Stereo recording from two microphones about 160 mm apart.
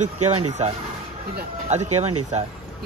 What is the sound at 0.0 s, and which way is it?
Speech, 50° right (ahead or behind).